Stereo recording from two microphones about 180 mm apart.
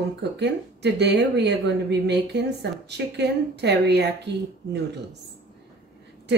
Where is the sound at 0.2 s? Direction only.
70° right (ahead or behind).